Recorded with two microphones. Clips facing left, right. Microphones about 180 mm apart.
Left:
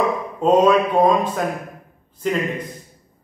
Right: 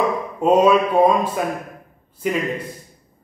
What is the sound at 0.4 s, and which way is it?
Speech, 10° right (ahead or behind).